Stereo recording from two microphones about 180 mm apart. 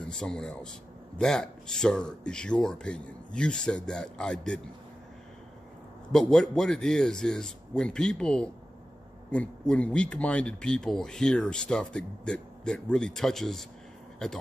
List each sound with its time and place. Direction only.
0.1 s speech: 5° left (ahead or behind)
6.1 s speech: 5° left (ahead or behind)